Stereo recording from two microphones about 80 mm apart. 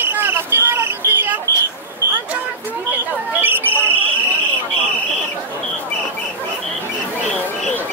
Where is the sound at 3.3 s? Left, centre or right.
Right.